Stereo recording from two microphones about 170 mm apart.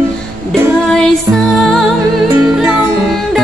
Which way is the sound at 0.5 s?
5° left (ahead or behind).